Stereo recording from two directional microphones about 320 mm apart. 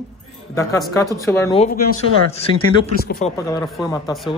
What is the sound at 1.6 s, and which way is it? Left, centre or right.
Speech, left.